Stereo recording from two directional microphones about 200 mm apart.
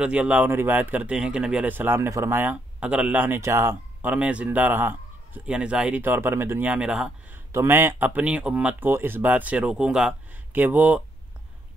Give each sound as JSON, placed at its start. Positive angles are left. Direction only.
{"t": 0.0, "sound": "speech", "side_deg": -5}